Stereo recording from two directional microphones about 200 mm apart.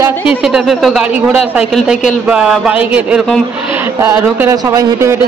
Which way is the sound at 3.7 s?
10° right (ahead or behind).